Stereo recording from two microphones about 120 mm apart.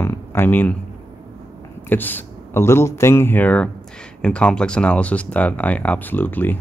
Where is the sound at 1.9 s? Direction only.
15° left (ahead or behind).